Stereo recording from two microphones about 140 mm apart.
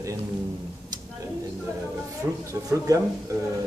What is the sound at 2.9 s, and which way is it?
Speech, 25° right (ahead or behind).